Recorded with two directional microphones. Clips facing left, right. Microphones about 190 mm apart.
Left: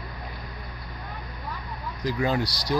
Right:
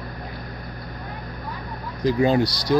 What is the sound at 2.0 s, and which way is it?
Speech, 25° right (ahead or behind).